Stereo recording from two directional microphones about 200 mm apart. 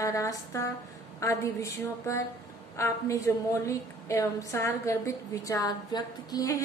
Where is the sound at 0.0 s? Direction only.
15° left (ahead or behind).